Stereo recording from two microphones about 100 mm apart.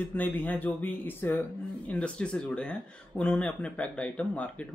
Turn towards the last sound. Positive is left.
turn(degrees=15)  # may be behind; listen again after turning